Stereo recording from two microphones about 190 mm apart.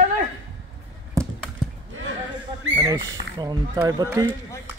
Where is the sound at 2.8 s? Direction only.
20° right (ahead or behind).